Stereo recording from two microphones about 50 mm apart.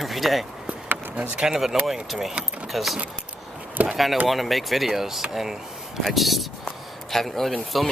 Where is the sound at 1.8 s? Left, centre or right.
Centre.